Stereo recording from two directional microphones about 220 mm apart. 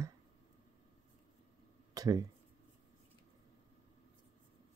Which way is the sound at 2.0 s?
15° right (ahead or behind).